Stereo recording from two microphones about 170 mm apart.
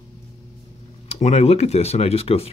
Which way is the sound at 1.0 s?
40° left (ahead or behind).